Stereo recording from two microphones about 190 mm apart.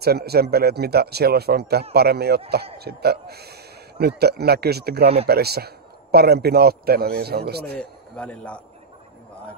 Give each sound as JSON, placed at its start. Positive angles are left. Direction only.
{"t": 0.0, "sound": "speech", "side_deg": -55}
{"t": 7.7, "sound": "a man's voice", "side_deg": 5}